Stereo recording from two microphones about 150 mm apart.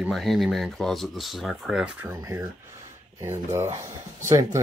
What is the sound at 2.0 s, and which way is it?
Speech, 20° right (ahead or behind).